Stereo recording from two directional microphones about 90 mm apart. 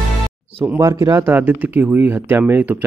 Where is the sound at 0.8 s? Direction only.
35° right (ahead or behind).